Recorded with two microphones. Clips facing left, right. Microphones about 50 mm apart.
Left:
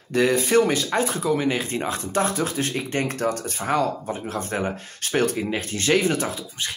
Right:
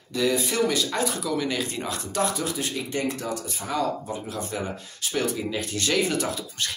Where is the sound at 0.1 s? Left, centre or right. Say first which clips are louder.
Left 6 dB; left.